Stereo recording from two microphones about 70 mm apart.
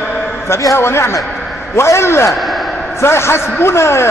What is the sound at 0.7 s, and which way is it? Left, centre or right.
A man's voice, left.